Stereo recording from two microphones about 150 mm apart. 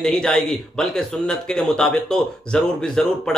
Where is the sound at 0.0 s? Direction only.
5° left (ahead or behind).